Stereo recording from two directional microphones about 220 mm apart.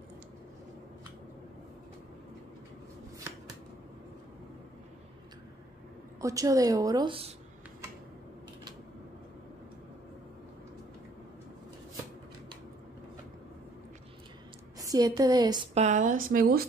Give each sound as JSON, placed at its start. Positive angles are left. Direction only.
{"t": 6.2, "sound": "a woman's voice", "side_deg": -15}
{"t": 14.8, "sound": "a woman's voice", "side_deg": -15}